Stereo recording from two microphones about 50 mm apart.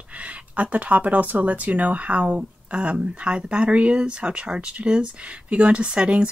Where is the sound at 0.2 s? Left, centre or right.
Right.